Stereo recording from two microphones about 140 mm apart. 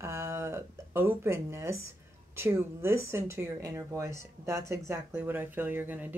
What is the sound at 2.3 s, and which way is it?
Speech, 15° right (ahead or behind).